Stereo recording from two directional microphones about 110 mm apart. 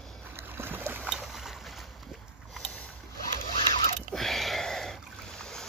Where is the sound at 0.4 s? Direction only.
20° right (ahead or behind).